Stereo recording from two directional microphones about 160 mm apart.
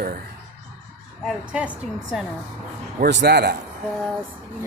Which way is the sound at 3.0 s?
90° right.